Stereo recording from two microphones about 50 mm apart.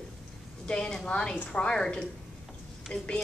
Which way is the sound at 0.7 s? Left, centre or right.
Centre.